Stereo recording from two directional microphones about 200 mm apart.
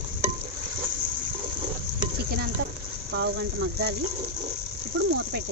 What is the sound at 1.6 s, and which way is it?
Frying, 45° right (ahead or behind).